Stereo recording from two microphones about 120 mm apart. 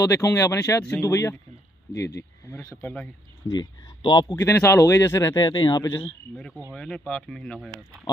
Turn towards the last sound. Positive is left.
turn(degrees=5)  # may be behind; listen again after turning